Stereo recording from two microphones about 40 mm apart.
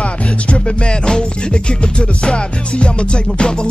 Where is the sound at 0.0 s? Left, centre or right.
Left.